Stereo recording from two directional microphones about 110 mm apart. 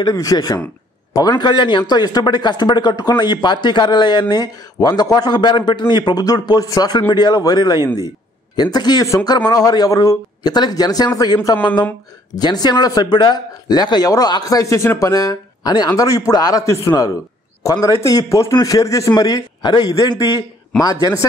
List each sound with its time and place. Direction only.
0.0 s speech: 35° left (ahead or behind)